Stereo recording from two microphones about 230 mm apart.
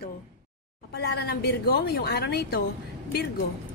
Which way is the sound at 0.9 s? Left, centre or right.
Left.